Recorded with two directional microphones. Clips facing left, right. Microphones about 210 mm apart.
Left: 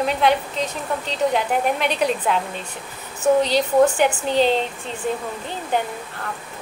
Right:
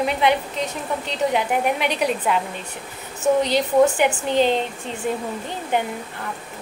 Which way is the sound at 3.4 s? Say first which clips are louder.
Even; 15° right (ahead or behind).